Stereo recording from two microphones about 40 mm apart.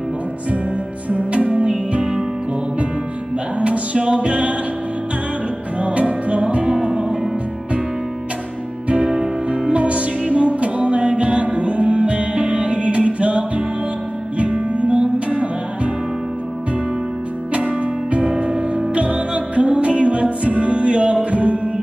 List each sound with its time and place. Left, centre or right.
1.1 s music: right
3.5 s music: right
5.8 s music: right
6.7 s music: centre
8.8 s music: right
9.5 s music: right
14.7 s music: right
19.1 s music: right